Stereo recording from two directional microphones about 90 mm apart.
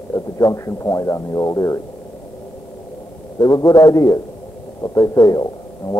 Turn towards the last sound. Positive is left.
turn(degrees=45)  # may be behind; listen again after turning